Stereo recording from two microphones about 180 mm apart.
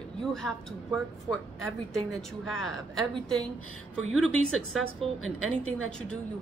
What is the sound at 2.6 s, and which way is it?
Speech, 5° left (ahead or behind).